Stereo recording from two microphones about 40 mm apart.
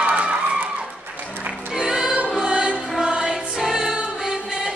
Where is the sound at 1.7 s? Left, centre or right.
Centre.